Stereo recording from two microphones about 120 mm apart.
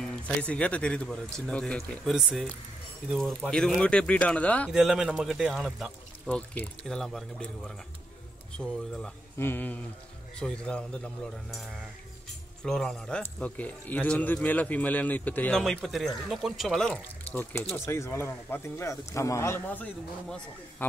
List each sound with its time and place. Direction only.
0.0 s speech: 10° left (ahead or behind)
4.6 s speech: centre (ahead or behind)
6.2 s speech: 10° left (ahead or behind)
9.4 s speech: 15° left (ahead or behind)
12.6 s speech: 5° left (ahead or behind)
15.6 s speech: centre (ahead or behind)
17.3 s speech: 15° left (ahead or behind)